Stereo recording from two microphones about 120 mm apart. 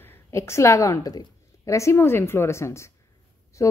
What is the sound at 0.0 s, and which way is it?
A woman's voice, 20° left (ahead or behind).